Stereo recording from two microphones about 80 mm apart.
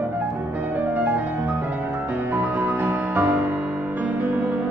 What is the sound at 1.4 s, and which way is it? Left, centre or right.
Music, right.